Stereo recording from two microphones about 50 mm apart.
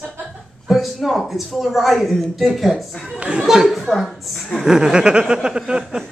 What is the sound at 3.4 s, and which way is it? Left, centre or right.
Speech, centre.